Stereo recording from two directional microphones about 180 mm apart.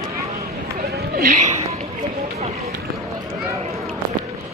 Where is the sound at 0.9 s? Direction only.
60° right (ahead or behind).